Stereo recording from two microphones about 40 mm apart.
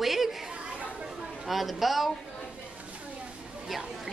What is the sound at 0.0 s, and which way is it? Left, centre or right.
Chatter, centre.